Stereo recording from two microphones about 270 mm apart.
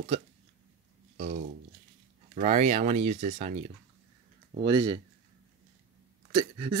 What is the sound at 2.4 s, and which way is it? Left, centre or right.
Speech, right.